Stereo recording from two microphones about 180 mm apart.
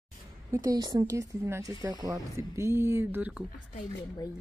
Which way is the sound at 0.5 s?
15° right (ahead or behind).